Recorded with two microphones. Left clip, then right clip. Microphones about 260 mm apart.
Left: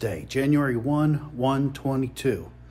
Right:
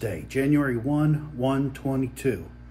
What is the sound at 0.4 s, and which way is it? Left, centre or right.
Speech, centre.